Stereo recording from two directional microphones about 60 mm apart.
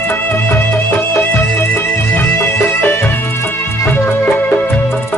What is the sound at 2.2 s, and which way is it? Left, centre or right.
Music, left.